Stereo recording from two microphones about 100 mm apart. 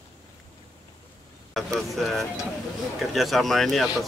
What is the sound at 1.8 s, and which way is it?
Speech, centre (ahead or behind).